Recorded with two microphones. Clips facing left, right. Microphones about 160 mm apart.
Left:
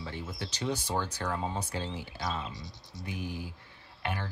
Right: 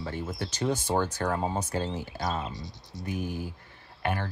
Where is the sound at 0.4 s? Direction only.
50° right (ahead or behind).